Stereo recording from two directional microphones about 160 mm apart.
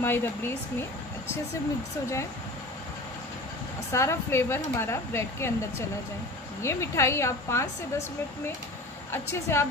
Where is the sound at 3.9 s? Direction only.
15° left (ahead or behind).